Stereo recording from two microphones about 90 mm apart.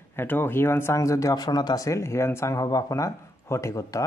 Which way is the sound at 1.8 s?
35° left (ahead or behind).